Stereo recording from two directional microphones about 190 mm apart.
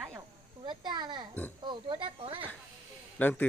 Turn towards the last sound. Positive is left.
turn(degrees=10)  # may be behind; listen again after turning